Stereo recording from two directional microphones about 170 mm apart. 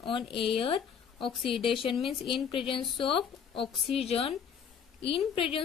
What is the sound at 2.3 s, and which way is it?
Speech, 30° left (ahead or behind).